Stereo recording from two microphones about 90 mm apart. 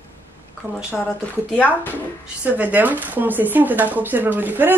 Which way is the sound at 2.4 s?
20° right (ahead or behind).